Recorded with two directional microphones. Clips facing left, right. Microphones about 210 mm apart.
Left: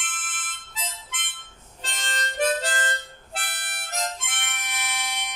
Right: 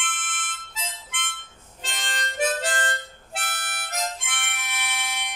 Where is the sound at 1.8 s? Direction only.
Centre (ahead or behind).